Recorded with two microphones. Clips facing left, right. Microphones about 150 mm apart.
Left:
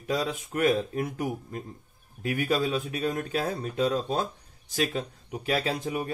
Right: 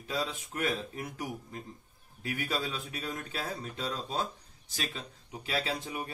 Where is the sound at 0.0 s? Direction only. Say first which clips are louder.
Left 6 dB; 55° left (ahead or behind).